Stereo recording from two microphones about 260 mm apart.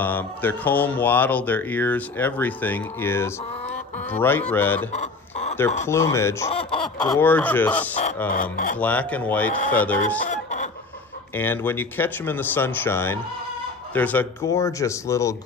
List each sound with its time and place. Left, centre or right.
0.0 s speech: centre
4.9 s chicken: left
5.9 s speech: centre
6.5 s speech: left
6.8 s speech: centre
8.4 s speech: left
8.7 s speech: centre
11.3 s speech: centre